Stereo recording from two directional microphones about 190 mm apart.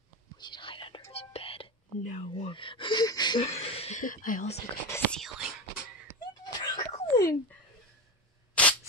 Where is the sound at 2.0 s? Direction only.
40° left (ahead or behind).